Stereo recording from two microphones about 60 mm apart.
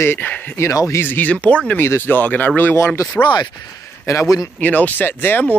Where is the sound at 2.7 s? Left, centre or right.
Left.